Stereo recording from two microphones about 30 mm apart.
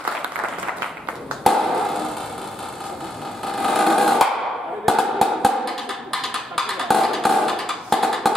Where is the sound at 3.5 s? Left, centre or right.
Centre.